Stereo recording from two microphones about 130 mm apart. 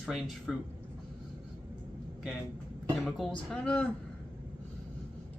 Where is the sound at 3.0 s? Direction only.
Centre (ahead or behind).